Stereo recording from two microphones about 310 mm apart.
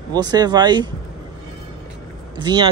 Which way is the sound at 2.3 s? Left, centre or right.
Centre.